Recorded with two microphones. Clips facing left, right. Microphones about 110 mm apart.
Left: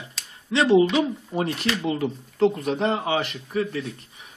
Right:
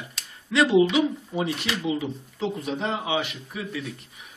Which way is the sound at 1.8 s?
60° left (ahead or behind).